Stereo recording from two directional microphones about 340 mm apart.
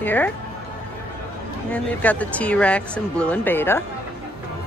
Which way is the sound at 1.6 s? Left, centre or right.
Centre.